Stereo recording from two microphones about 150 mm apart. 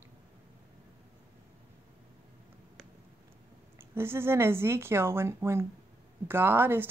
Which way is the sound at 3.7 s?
15° right (ahead or behind).